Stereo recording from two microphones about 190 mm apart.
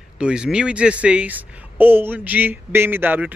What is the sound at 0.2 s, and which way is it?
Speech, 5° right (ahead or behind).